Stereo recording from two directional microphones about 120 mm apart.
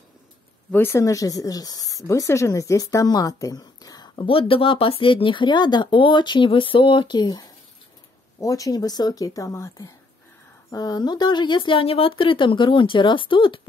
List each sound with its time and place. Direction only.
0.7 s speech: 15° left (ahead or behind); by 13.6 s 45° left (ahead or behind)